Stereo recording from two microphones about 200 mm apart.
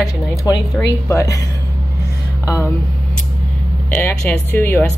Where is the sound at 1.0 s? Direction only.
15° left (ahead or behind).